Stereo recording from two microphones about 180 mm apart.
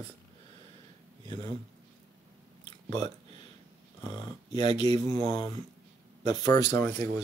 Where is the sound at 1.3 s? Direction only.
25° left (ahead or behind).